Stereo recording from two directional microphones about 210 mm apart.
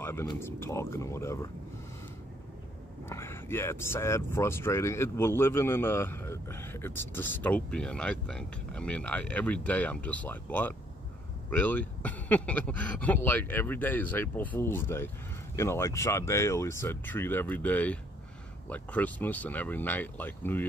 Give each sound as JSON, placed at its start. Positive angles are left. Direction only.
{"t": 0.0, "sound": "a sound", "side_deg": 10}
{"t": 0.4, "sound": "speech", "side_deg": 10}
{"t": 3.1, "sound": "speech", "side_deg": 10}